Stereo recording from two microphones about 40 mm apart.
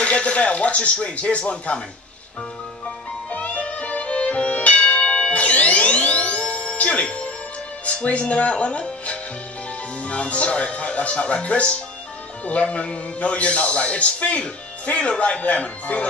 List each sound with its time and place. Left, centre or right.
0.0 s a man's voice: left
3.3 s music: left
7.8 s a man's voice: left